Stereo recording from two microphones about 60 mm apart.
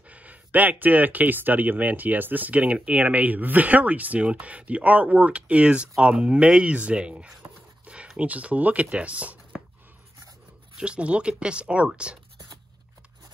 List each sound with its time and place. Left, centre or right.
0.1 s speech: right
7.8 s a sound: centre
8.2 s speech: right
10.8 s speech: centre